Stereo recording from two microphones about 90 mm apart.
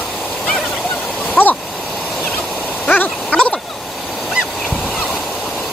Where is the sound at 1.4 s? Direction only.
25° left (ahead or behind).